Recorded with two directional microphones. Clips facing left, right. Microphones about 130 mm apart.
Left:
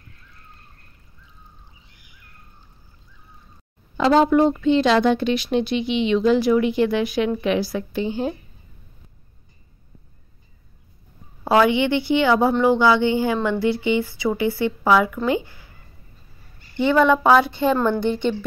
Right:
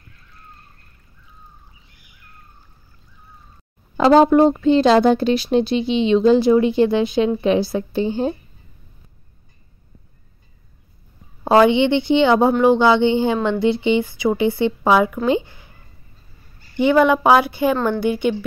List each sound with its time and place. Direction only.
3.9 s speech: 40° right (ahead or behind)
11.4 s speech: 25° right (ahead or behind)
16.7 s a woman's voice: 15° right (ahead or behind)